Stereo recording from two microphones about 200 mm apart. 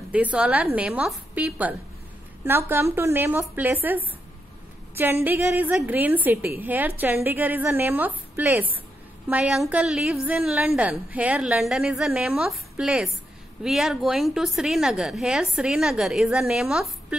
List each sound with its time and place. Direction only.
0.1 s a woman's voice: 5° right (ahead or behind)